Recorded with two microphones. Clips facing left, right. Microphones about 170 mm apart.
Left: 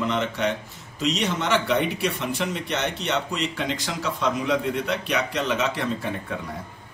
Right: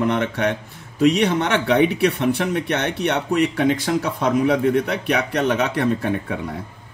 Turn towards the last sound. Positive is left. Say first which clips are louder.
# right 6 dB
turn(degrees=-60)  # may be behind; listen again after turning